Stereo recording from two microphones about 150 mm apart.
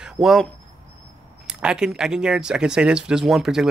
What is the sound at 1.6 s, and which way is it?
Speech, 5° right (ahead or behind).